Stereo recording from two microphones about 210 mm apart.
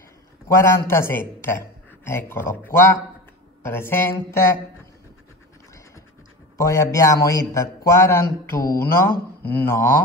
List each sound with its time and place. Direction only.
0.5 s a man's voice: 15° left (ahead or behind)
6.6 s a man's voice: 15° left (ahead or behind)